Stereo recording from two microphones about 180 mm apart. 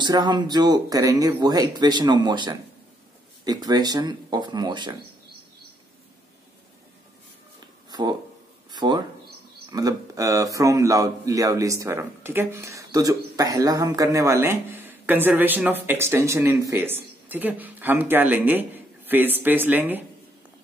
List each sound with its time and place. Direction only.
0.0 s speech: 25° right (ahead or behind)
7.9 s speech: 25° right (ahead or behind)